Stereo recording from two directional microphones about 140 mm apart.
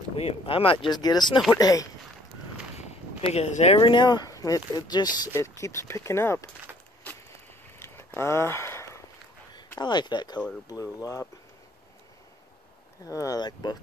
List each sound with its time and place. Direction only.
0.1 s speech: 45° left (ahead or behind); by 1.9 s 25° left (ahead or behind)
2.8 s a sound: 50° left (ahead or behind)
3.8 s speech: 35° left (ahead or behind); by 6.5 s 20° left (ahead or behind)
7.8 s a sound: 20° left (ahead or behind)
9.8 s speech: 30° left (ahead or behind)
13.0 s speech: 25° left (ahead or behind)